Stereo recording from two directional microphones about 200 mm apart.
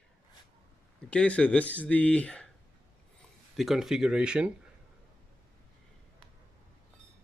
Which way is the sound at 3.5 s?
Centre (ahead or behind).